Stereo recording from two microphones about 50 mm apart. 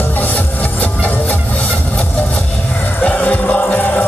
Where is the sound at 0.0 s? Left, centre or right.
Left.